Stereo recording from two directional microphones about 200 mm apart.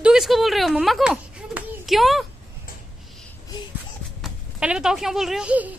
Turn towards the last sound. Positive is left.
turn(degrees=-5)  # may be behind; listen again after turning